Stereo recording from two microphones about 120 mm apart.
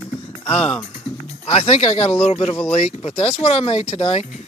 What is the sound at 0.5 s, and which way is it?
Speech, 50° left (ahead or behind).